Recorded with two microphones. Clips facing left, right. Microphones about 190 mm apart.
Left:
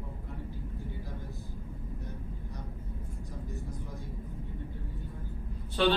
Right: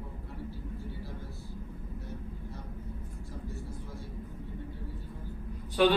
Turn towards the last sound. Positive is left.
turn(degrees=-10)  # may be behind; listen again after turning